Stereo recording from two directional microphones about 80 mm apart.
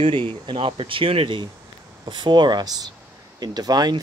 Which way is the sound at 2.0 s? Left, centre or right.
Right.